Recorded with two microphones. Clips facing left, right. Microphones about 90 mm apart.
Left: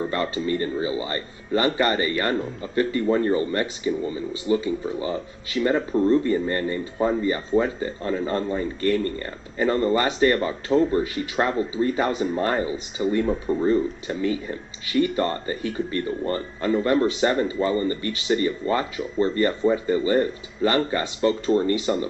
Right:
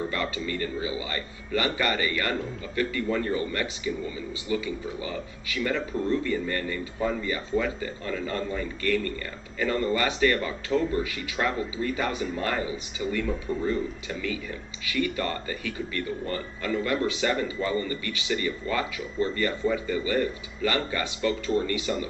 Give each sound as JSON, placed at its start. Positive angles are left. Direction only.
{"t": 0.1, "sound": "speech", "side_deg": 35}